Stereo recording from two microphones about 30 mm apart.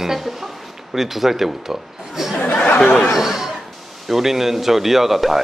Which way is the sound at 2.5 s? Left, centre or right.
Left.